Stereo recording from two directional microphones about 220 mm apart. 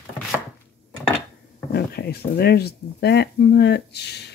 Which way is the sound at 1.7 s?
45° left (ahead or behind).